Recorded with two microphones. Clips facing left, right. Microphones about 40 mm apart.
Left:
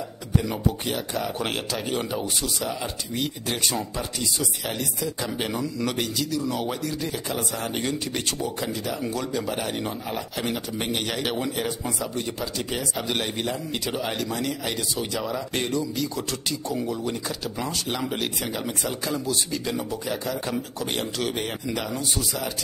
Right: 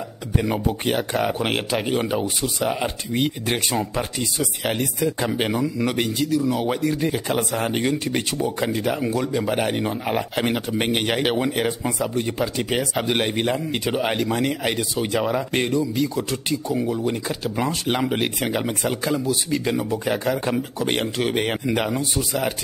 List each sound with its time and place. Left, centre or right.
0.4 s a man's voice: right
2.6 s a man's voice: right
5.4 s speech: right
6.7 s a man's voice: right
7.9 s a man's voice: right
9.0 s speech: centre
9.5 s speech: right
10.0 s a man's voice: right
15.5 s a man's voice: centre; by 21.9 s right
21.9 s speech: right